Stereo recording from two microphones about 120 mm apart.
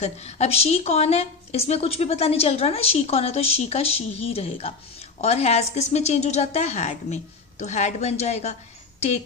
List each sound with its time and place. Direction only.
0.0 s a woman's voice: 65° left (ahead or behind)